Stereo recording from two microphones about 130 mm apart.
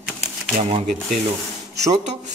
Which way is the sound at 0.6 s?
55° right (ahead or behind).